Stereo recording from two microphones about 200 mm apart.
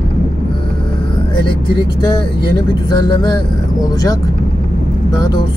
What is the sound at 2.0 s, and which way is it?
Speech, 20° left (ahead or behind).